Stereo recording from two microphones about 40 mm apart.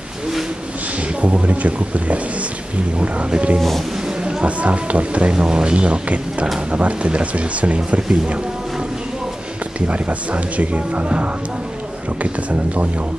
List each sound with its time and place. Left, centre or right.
1.2 s speech: right
5.3 s speech: right
9.8 s speech: right